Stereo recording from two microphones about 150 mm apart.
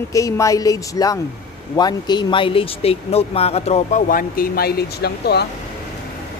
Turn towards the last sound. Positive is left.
turn(degrees=90)